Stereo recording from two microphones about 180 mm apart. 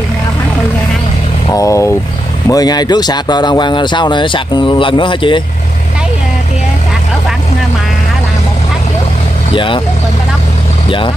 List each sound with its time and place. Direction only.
1.5 s vehicle: 15° left (ahead or behind)
2.4 s speech: 20° left (ahead or behind)
9.5 s speech: 30° left (ahead or behind)